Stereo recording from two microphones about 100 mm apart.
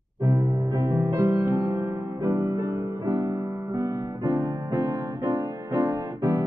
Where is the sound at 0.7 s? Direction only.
30° right (ahead or behind).